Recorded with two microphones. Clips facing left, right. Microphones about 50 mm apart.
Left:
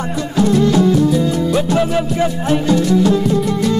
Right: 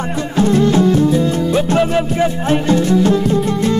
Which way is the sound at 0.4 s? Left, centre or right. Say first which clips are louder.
Even; right.